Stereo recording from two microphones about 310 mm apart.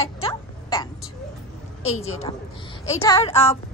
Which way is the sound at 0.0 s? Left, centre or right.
Centre.